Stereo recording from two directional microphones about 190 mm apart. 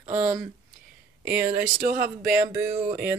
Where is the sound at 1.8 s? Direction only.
45° right (ahead or behind).